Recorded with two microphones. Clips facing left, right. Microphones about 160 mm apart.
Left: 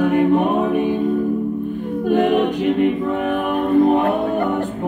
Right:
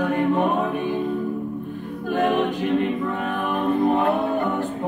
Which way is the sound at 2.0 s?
20° left (ahead or behind).